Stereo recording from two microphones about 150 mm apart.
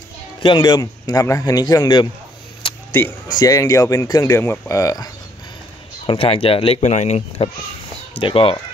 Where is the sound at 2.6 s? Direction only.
35° left (ahead or behind).